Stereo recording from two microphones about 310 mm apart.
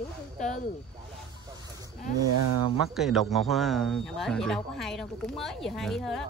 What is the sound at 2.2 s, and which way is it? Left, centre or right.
Speech, right.